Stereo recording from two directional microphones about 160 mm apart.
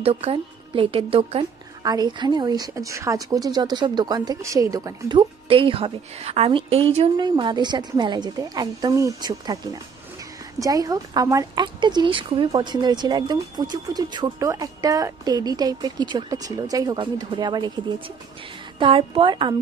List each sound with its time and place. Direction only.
0.0 s a woman's voice: 40° right (ahead or behind)